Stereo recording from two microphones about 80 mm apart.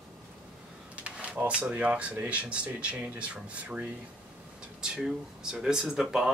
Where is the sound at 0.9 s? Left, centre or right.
Centre.